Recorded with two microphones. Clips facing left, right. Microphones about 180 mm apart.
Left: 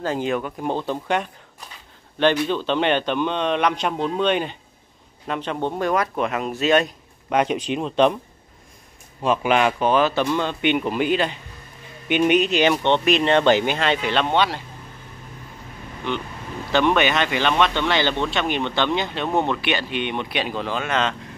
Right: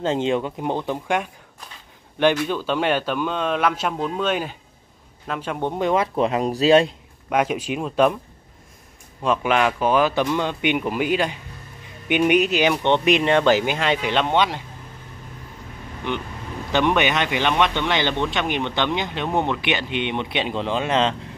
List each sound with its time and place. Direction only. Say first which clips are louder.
0.0 s speech: right 2 dB; 25° right (ahead or behind)
2.4 s a man's voice: left 1 dB; 10° right (ahead or behind); by 6.9 s 30° right (ahead or behind)
7.2 s a man's voice: left 1 dB; 5° right (ahead or behind)
9.2 s a man's voice: left 1 dB; 5° left (ahead or behind); by 14.6 s 15° right (ahead or behind)
16.1 s speech: even; 15° right (ahead or behind)